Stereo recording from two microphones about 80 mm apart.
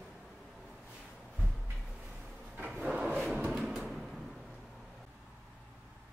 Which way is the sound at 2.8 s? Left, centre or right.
Centre.